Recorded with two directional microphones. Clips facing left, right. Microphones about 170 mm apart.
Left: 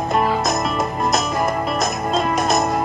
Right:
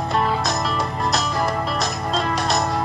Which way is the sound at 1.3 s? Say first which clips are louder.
Left 2 dB; 20° left (ahead or behind).